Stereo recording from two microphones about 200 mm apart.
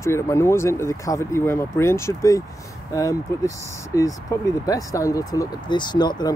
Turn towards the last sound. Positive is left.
turn(degrees=20)  # may be behind; listen again after turning